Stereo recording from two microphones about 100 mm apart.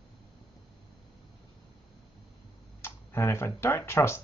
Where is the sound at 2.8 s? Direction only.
25° left (ahead or behind).